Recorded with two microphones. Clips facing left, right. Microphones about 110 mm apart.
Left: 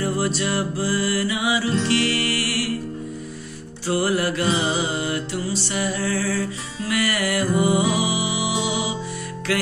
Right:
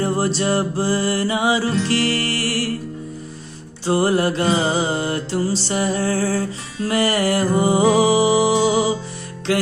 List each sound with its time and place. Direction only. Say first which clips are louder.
0.0 s music: right 3 dB; 30° right (ahead or behind)
3.8 s music: right 4 dB; 30° right (ahead or behind)